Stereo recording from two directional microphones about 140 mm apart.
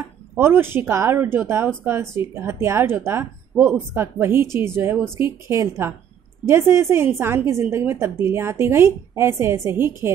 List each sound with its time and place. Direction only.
0.4 s a woman's voice: 15° right (ahead or behind)